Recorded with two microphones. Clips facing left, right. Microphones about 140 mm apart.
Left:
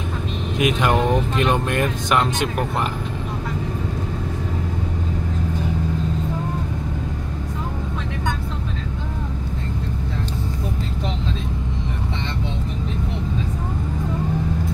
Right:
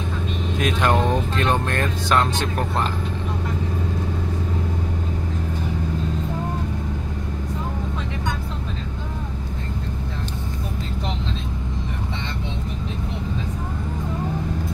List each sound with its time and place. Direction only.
0.6 s speech: 10° left (ahead or behind)